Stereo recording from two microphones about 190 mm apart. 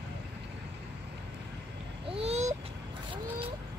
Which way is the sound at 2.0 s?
30° right (ahead or behind).